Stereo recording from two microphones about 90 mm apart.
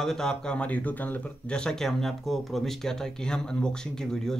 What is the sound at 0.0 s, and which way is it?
Speech, 5° left (ahead or behind).